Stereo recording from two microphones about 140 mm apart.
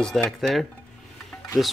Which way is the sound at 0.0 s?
Centre (ahead or behind).